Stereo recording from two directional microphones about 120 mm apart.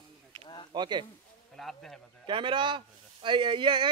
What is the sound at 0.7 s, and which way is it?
Speech, 40° right (ahead or behind).